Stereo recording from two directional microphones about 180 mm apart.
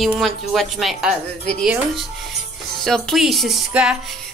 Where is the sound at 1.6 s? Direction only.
Centre (ahead or behind).